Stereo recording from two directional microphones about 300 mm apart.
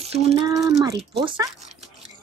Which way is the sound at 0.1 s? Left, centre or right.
Centre.